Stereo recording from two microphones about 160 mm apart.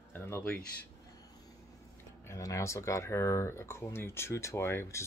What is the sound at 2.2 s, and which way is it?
Speech, 20° left (ahead or behind).